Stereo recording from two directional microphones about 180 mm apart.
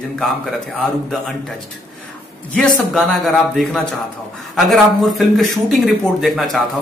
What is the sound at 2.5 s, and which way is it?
A man's voice, 5° left (ahead or behind).